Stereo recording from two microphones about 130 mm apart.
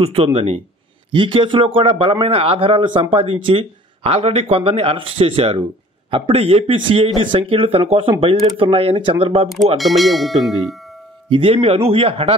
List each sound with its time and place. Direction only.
0.0 s speech: 50° right (ahead or behind)
9.8 s speech: centre (ahead or behind)
11.2 s speech: 45° right (ahead or behind)